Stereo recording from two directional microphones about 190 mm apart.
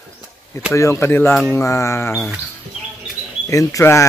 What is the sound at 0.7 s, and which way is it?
Mantra, 15° left (ahead or behind).